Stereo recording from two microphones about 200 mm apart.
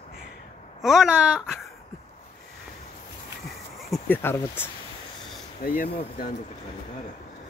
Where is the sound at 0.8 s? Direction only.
5° right (ahead or behind).